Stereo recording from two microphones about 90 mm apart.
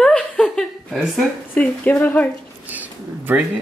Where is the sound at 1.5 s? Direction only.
15° left (ahead or behind).